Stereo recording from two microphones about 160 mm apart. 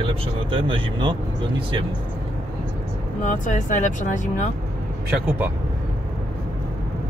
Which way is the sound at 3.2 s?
50° left (ahead or behind).